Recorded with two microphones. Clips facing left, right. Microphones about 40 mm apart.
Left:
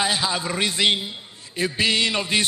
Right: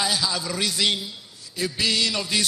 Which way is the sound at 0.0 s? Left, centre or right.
Left.